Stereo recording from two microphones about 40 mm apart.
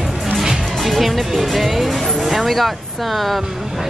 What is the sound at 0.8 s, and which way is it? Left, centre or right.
Speech, centre.